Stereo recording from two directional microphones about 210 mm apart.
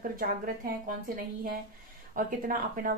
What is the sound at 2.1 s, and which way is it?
Speech, 40° right (ahead or behind).